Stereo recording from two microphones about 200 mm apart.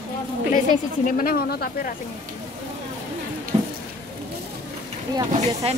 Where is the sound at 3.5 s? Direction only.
25° right (ahead or behind).